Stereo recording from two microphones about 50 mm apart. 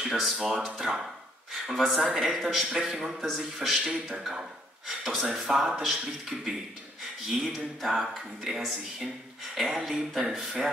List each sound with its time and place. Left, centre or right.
0.0 s a man's voice: centre
1.7 s a man's voice: centre
6.3 s speech: centre
7.2 s speech: centre